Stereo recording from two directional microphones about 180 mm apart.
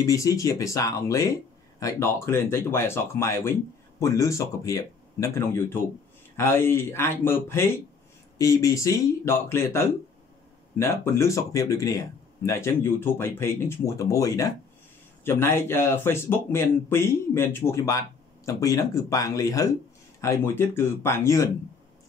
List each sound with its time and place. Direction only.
0.0 s speech: 20° left (ahead or behind)